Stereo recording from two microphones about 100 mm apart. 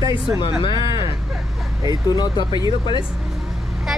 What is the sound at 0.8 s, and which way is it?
Speech, 55° left (ahead or behind).